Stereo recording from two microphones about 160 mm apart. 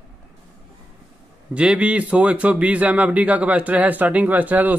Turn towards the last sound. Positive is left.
turn(degrees=-10)  # may be behind; listen again after turning